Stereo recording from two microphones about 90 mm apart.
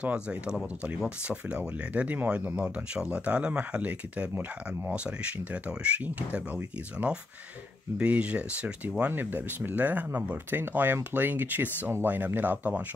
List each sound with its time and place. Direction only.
0.0 s speech: 15° right (ahead or behind)